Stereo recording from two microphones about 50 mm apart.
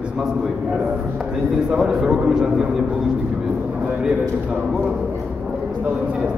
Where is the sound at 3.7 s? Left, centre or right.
Right.